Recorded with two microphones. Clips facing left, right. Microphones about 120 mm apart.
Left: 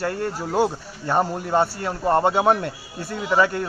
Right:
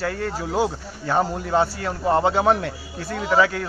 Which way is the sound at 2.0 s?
10° right (ahead or behind).